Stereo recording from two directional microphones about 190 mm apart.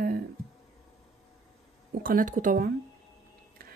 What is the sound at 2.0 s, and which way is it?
Speech, 45° right (ahead or behind).